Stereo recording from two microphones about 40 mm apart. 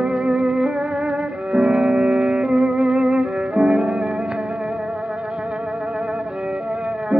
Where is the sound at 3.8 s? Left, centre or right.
Right.